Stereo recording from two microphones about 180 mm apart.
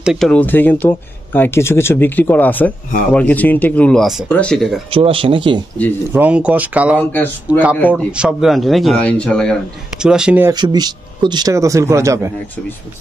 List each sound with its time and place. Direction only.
0.0 s speech: centre (ahead or behind)
4.9 s speech: 30° right (ahead or behind)
6.1 s speech: 10° right (ahead or behind)
7.0 s speech: 10° left (ahead or behind)
7.5 s speech: 10° right (ahead or behind)
10.5 s speech: 25° right (ahead or behind)